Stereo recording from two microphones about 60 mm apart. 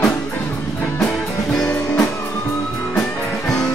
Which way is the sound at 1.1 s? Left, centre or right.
Centre.